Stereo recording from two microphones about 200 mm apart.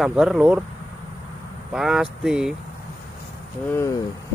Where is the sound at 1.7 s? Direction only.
Centre (ahead or behind).